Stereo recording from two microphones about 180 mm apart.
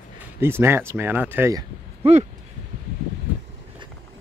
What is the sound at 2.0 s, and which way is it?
Speech, 35° right (ahead or behind).